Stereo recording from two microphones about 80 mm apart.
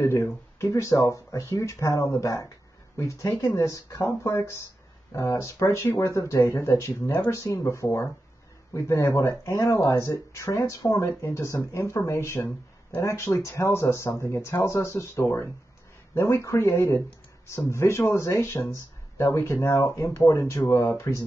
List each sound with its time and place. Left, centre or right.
0.0 s speech: left